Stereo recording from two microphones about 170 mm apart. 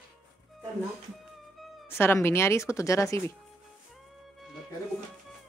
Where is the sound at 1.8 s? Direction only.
15° left (ahead or behind).